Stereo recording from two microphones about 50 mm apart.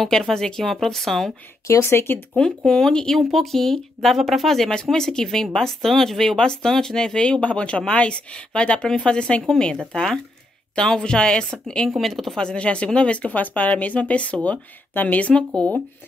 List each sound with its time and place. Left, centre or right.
0.0 s speech: centre
1.8 s speech: left
2.3 s speech: centre
3.2 s speech: centre
12.0 s speech: centre
12.4 s speech: centre